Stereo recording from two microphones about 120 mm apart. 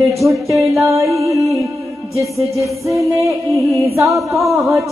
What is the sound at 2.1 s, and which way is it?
Music, 25° right (ahead or behind).